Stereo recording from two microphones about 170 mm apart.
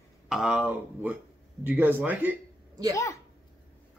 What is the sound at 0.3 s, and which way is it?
Speech, 5° right (ahead or behind).